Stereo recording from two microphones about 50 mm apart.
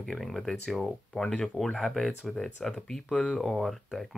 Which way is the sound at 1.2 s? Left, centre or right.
Centre.